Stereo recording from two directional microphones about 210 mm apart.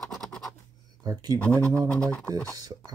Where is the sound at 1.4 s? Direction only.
5° left (ahead or behind).